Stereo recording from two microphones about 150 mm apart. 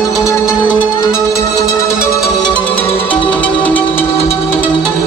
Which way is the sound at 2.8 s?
40° left (ahead or behind).